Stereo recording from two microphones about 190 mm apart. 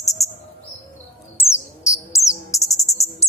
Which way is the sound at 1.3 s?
15° left (ahead or behind).